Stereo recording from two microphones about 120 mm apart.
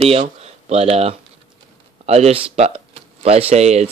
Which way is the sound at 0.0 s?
55° right (ahead or behind).